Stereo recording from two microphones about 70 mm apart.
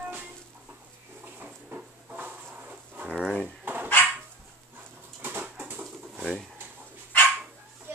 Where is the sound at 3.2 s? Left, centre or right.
Centre.